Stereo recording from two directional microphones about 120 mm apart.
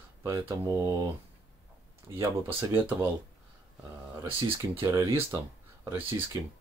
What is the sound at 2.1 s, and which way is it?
Speech, 20° right (ahead or behind).